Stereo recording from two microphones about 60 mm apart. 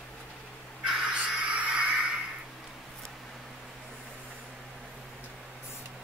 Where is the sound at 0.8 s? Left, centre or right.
Centre.